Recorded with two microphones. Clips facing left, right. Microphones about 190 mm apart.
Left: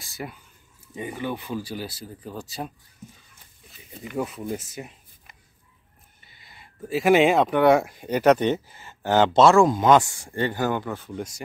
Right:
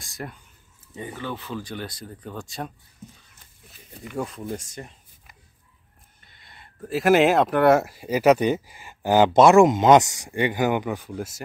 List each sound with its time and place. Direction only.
0.0 s speech: 5° left (ahead or behind)
0.9 s speech: 15° left (ahead or behind); by 11.4 s 5° right (ahead or behind)